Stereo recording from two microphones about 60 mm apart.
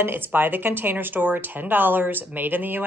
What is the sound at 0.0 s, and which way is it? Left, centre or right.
Speech, right.